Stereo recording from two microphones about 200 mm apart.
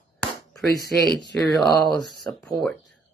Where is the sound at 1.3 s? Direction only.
10° left (ahead or behind).